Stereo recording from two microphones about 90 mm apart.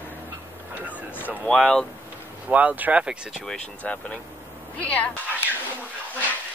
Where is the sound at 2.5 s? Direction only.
15° right (ahead or behind).